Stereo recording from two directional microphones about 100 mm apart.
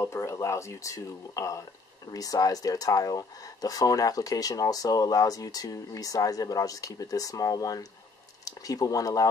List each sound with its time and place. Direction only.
0.0 s speech: 30° left (ahead or behind)